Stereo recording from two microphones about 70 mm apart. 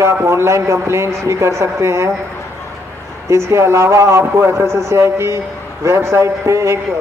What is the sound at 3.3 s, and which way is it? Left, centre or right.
A man's voice, right.